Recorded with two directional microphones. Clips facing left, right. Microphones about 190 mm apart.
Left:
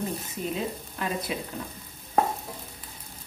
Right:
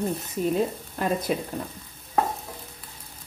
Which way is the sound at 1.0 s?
45° right (ahead or behind).